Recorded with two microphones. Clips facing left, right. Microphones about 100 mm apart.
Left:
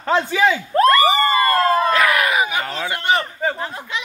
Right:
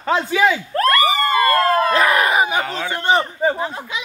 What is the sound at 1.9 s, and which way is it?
Crowd, 30° right (ahead or behind).